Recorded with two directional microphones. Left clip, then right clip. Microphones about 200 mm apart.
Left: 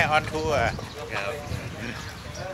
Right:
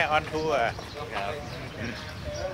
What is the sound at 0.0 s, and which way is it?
Speech, 25° left (ahead or behind).